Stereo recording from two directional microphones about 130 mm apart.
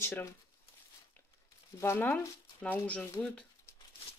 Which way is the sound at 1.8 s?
20° left (ahead or behind).